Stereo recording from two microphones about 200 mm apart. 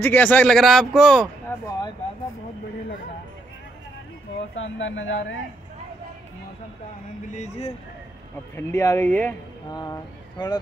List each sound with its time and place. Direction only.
0.0 s a man's voice: 10° left (ahead or behind)
4.6 s speech: 70° left (ahead or behind)
7.3 s speech: 35° left (ahead or behind)
8.5 s speech: 15° left (ahead or behind)
9.7 s speech: 20° left (ahead or behind)